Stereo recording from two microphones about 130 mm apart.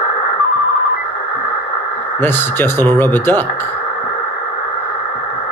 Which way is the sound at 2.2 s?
15° left (ahead or behind).